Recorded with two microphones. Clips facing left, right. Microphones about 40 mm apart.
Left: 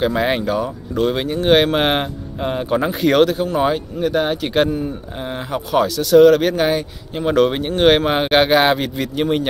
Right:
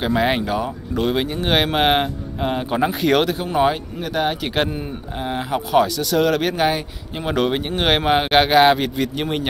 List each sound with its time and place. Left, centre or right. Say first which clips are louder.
0.0 s speech: left 1 dB; centre
4.6 s speech: left 6 dB; right
5.2 s speech: right 2 dB; centre